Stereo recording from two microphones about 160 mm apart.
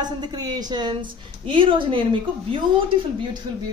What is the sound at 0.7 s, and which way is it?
A woman's voice, 30° right (ahead or behind).